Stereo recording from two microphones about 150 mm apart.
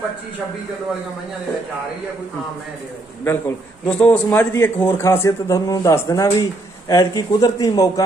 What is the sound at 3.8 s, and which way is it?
A man's voice, 10° left (ahead or behind).